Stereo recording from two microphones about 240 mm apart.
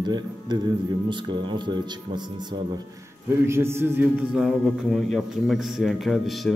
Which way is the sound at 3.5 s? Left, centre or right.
Centre.